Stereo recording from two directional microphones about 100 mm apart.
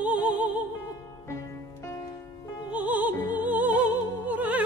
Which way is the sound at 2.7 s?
15° right (ahead or behind).